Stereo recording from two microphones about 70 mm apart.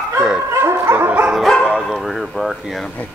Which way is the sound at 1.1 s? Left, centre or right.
Right.